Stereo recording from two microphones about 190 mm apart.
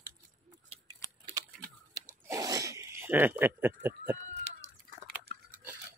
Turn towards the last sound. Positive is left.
turn(degrees=-10)  # may be behind; listen again after turning